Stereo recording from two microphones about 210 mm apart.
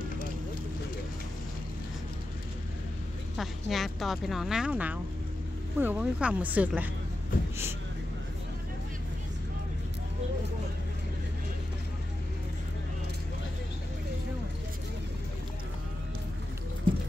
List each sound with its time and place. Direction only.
3.3 s speech: centre (ahead or behind)